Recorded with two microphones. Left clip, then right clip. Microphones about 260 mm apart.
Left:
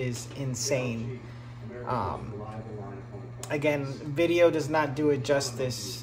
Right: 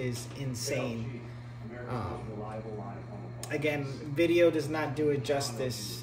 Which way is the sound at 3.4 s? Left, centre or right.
Centre.